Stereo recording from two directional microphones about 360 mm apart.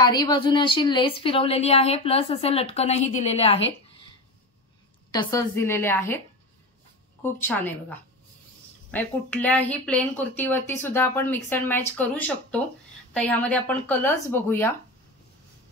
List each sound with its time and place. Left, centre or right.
0.0 s a woman's voice: centre
5.1 s a woman's voice: centre
7.3 s speech: centre